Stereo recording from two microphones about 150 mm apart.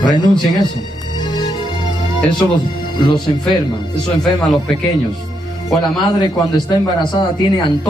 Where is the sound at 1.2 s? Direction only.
30° left (ahead or behind).